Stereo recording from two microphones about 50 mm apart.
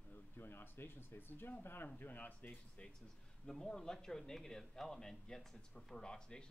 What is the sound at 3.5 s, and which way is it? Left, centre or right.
Speech, centre.